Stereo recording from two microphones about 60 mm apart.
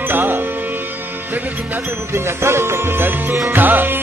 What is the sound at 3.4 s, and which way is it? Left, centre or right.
Music, right.